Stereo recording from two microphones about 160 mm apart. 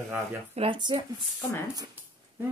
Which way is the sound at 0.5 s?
30° right (ahead or behind).